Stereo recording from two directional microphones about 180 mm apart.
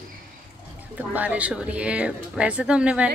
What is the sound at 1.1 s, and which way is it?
A woman's voice, 10° right (ahead or behind).